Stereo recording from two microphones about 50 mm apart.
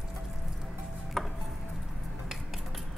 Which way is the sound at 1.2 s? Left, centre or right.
Centre.